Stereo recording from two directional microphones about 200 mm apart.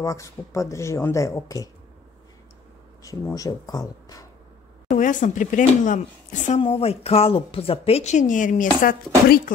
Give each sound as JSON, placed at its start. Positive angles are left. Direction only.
{"t": 0.0, "sound": "speech", "side_deg": 15}
{"t": 3.0, "sound": "speech", "side_deg": 15}
{"t": 4.8, "sound": "speech", "side_deg": 40}